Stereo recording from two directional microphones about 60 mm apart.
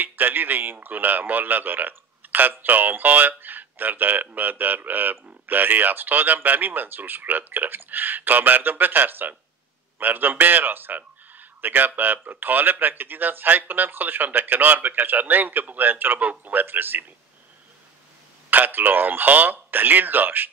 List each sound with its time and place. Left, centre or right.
0.0 s a man's voice: right
16.6 s a man's voice: right
18.5 s a man's voice: right